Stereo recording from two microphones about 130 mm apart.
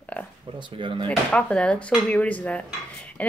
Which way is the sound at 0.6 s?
40° right (ahead or behind).